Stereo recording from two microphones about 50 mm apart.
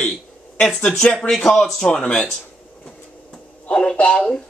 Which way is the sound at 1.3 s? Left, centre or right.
Centre.